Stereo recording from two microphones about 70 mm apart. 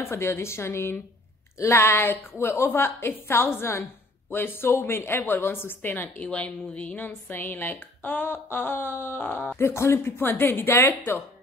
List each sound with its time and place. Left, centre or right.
0.0 s a woman's voice: left
9.6 s a woman's voice: left